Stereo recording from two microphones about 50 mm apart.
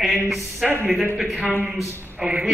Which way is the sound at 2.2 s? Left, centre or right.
Centre.